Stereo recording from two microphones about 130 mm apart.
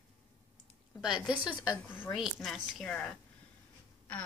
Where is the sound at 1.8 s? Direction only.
15° left (ahead or behind).